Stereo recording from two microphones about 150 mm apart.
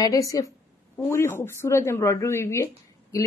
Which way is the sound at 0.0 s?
20° left (ahead or behind).